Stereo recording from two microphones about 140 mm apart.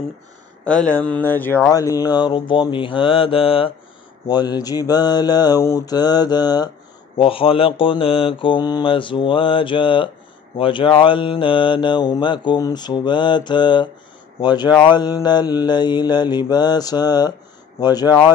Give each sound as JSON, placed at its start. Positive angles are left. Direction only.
{"t": 0.7, "sound": "speech", "side_deg": 10}
{"t": 1.7, "sound": "mantra", "side_deg": 25}
{"t": 4.3, "sound": "mantra", "side_deg": 30}
{"t": 7.2, "sound": "mantra", "side_deg": 40}